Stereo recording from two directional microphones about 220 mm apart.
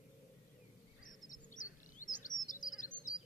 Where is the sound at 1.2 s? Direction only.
35° left (ahead or behind).